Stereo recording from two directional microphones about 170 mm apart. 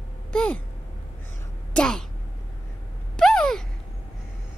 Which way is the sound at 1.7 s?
5° left (ahead or behind).